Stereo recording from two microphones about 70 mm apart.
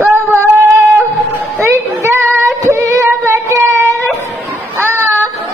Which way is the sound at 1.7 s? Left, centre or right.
Right.